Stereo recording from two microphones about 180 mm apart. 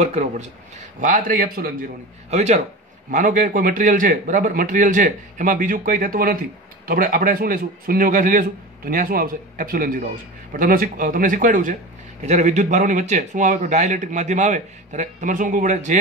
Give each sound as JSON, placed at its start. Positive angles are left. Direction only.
{"t": 0.0, "sound": "a man's voice", "side_deg": -40}
{"t": 2.3, "sound": "a man's voice", "side_deg": -40}